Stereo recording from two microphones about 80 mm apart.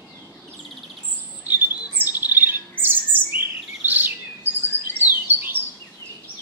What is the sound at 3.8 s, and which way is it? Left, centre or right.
Chirp, right.